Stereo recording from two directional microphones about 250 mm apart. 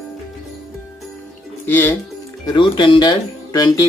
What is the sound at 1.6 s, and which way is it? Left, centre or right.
Music, centre.